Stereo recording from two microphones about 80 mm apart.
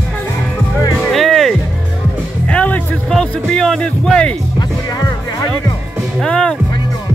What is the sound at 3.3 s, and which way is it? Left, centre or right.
Music, centre.